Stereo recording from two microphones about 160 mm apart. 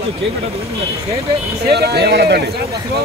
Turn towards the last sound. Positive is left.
turn(degrees=-90)